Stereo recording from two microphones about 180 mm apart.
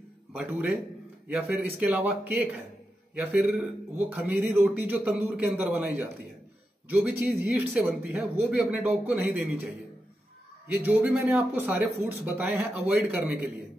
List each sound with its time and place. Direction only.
0.3 s a man's voice: 10° right (ahead or behind)
10.7 s a man's voice: 10° right (ahead or behind)